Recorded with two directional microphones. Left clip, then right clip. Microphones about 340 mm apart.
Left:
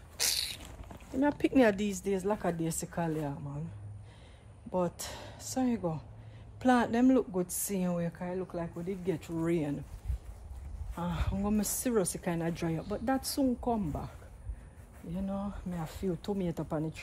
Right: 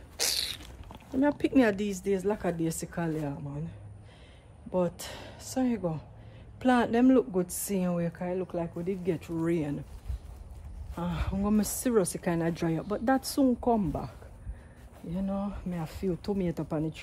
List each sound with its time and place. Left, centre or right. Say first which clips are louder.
0.2 s cat: right 2 dB; right
1.2 s speech: right 1 dB; centre
4.6 s speech: right 3 dB; centre
11.0 s speech: right 2 dB; centre